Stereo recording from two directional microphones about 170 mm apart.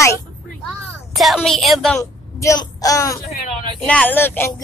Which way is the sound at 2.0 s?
20° left (ahead or behind).